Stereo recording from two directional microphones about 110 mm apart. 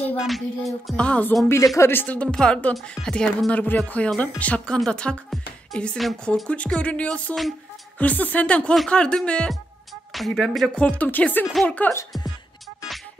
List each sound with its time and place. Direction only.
0.3 s music: centre (ahead or behind)
1.0 s a woman's voice: 10° left (ahead or behind)
10.1 s music: centre (ahead or behind)
10.8 s a woman's voice: 10° left (ahead or behind)